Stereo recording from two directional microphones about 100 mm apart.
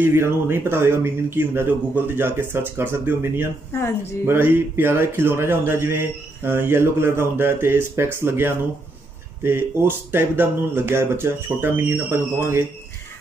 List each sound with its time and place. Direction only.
0.0 s speech: 25° right (ahead or behind)